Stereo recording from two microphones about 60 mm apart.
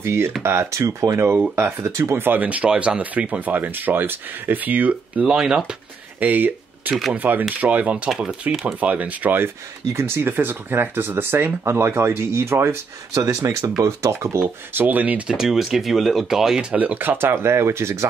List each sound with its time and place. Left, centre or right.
0.0 s speech: right
1.5 s speech: right
1.9 s speech: right
2.1 s speech: right
5.2 s speech: centre
6.1 s a sound: right
7.2 s speech: right
8.2 s speech: centre
8.7 s speech: right
13.1 s speech: right
14.7 s speech: right
15.3 s speech: centre
16.7 s speech: right